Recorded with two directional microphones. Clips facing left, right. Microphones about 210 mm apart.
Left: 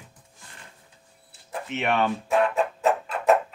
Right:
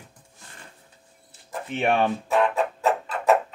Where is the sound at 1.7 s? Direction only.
30° right (ahead or behind).